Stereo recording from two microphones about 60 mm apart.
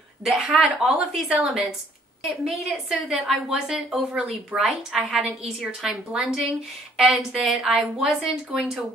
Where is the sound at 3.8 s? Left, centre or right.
Centre.